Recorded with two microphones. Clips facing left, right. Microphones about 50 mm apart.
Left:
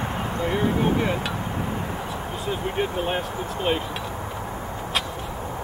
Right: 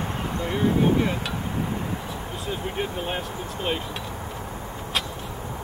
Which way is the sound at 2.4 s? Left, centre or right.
Centre.